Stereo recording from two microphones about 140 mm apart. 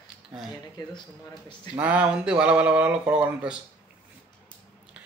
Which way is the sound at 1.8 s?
10° right (ahead or behind).